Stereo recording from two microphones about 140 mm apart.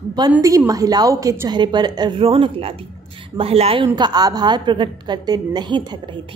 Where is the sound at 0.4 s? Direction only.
25° right (ahead or behind).